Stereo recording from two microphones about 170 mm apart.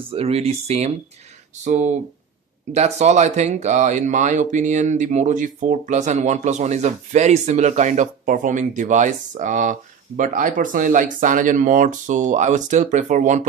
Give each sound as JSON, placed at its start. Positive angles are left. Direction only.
{"t": 0.1, "sound": "speech", "side_deg": -35}